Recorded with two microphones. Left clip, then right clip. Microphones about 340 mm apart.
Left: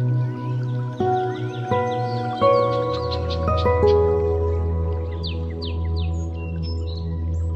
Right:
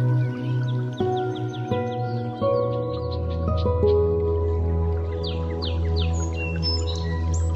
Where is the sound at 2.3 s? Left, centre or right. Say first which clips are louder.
Left 6 dB; left.